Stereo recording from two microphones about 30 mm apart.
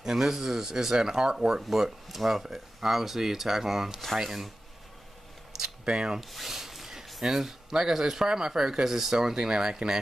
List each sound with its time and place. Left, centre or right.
0.0 s speech: centre
1.8 s speech: centre
5.9 s speech: right
6.2 s rub: centre
7.2 s speech: centre
9.4 s speech: right